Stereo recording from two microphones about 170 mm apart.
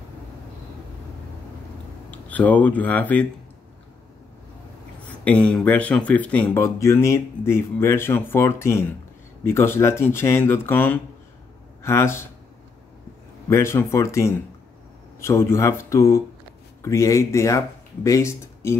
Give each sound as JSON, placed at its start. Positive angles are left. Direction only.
{"t": 2.0, "sound": "speech", "side_deg": 10}
{"t": 5.0, "sound": "speech", "side_deg": 10}
{"t": 13.5, "sound": "speech", "side_deg": 15}